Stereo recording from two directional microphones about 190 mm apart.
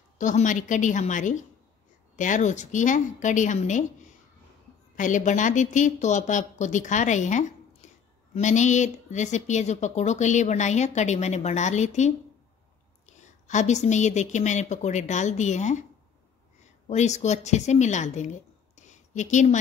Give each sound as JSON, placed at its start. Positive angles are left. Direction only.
{"t": 0.2, "sound": "a woman's voice", "side_deg": 40}
{"t": 7.8, "sound": "a sound", "side_deg": 40}
{"t": 8.4, "sound": "a woman's voice", "side_deg": 40}
{"t": 16.8, "sound": "a woman's voice", "side_deg": 35}